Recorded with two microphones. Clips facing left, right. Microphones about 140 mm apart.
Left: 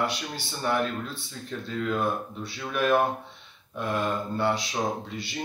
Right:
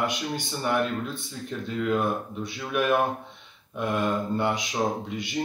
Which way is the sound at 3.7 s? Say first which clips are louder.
Right 2 dB; 15° right (ahead or behind).